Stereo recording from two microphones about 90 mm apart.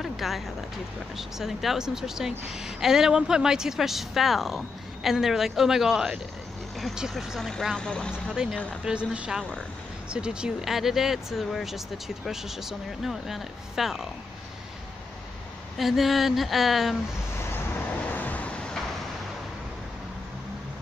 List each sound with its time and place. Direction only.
0.0 s a sound: centre (ahead or behind)
1.1 s a woman's voice: 5° right (ahead or behind)
8.8 s a woman's voice: 10° right (ahead or behind)
15.8 s a woman's voice: centre (ahead or behind)
18.1 s vehicle: 15° left (ahead or behind)